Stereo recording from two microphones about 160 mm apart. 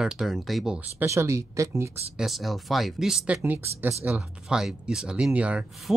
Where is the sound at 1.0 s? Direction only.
15° right (ahead or behind).